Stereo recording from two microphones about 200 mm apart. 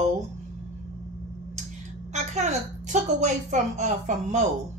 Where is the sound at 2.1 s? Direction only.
35° right (ahead or behind).